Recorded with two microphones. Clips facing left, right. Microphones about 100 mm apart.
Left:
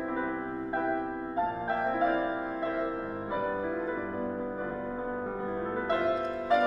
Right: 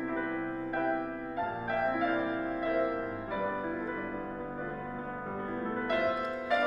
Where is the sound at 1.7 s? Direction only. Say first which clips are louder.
Even; 30° left (ahead or behind).